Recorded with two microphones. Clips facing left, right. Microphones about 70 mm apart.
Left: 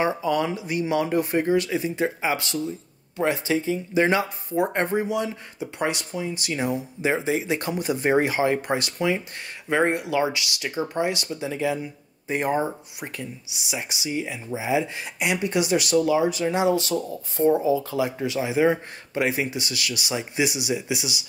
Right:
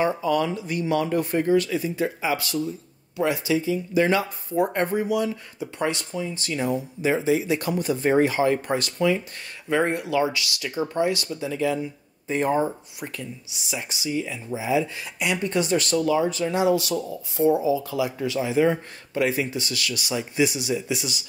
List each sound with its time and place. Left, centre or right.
0.0 s speech: left
3.9 s speech: left
7.0 s speech: left
16.4 s speech: left
18.2 s speech: centre